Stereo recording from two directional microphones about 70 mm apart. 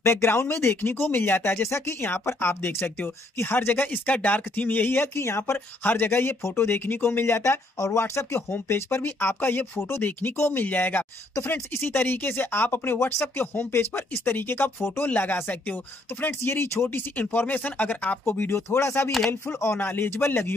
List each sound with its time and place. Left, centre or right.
0.0 s speech: left
5.9 s speech: left